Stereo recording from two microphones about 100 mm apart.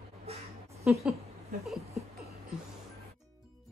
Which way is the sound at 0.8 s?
5° right (ahead or behind).